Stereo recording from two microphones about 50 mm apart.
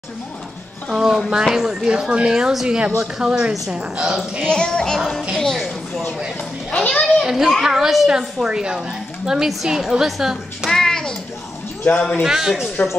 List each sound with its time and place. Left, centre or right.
0.9 s a woman's voice: centre
4.5 s speech: centre
4.9 s a woman's voice: centre
6.9 s children playing: centre
7.2 s a woman's voice: centre
10.7 s music: centre
11.9 s a man's voice: left
12.2 s a woman's voice: centre